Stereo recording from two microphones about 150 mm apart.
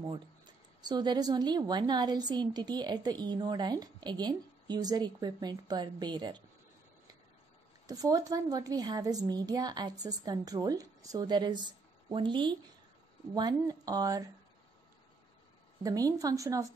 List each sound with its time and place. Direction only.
0.0 s speech: 30° right (ahead or behind)
7.8 s speech: 25° right (ahead or behind)
15.8 s speech: 25° right (ahead or behind)